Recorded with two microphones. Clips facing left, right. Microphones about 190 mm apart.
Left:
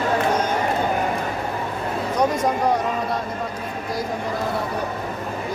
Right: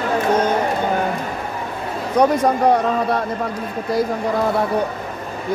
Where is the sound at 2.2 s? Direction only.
60° right (ahead or behind).